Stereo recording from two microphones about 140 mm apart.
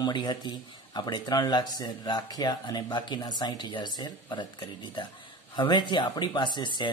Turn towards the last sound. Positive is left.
turn(degrees=35)  # may be behind; listen again after turning